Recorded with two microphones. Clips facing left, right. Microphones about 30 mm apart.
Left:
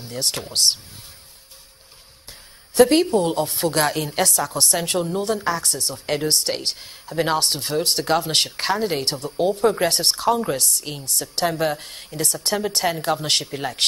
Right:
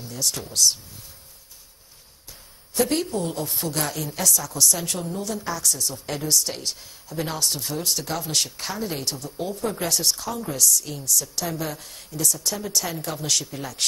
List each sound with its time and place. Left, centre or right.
0.0 s a woman's voice: left
2.7 s a woman's voice: left